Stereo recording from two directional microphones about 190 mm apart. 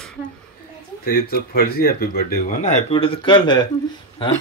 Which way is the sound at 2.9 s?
25° left (ahead or behind).